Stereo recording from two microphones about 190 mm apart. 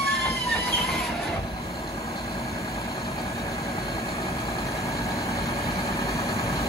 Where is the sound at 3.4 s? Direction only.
15° left (ahead or behind).